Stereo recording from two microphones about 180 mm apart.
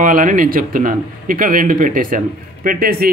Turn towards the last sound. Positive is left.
turn(degrees=-55)  # may be behind; listen again after turning